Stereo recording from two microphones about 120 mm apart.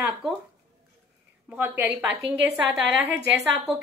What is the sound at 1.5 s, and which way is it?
A woman's voice, 15° right (ahead or behind).